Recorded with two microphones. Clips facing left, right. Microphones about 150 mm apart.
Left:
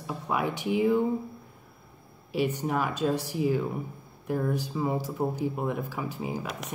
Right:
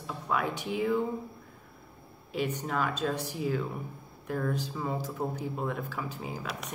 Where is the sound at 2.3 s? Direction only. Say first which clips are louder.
Left 4 dB; 10° left (ahead or behind).